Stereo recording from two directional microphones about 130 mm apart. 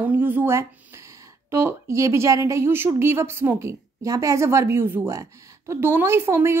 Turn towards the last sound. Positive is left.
turn(degrees=-20)  # may be behind; listen again after turning